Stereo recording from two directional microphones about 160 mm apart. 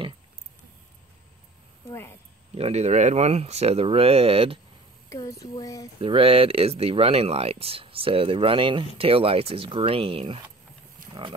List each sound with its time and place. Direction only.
1.9 s speech: 15° left (ahead or behind)
2.5 s speech: 40° right (ahead or behind)
5.1 s speech: 20° left (ahead or behind)
5.9 s speech: 35° right (ahead or behind)